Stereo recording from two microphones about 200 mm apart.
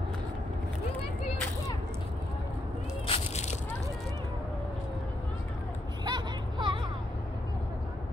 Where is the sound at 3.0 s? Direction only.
30° left (ahead or behind).